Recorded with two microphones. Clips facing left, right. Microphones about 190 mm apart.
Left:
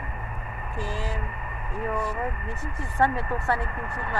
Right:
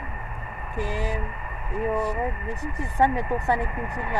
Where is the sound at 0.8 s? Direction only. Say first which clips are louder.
Right 4 dB; 15° right (ahead or behind).